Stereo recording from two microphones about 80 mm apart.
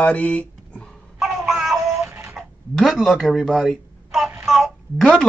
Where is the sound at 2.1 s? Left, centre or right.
Right.